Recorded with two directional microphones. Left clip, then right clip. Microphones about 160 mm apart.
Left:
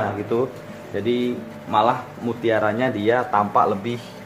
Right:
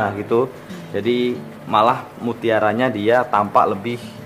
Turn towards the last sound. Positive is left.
turn(degrees=-25)  # may be behind; listen again after turning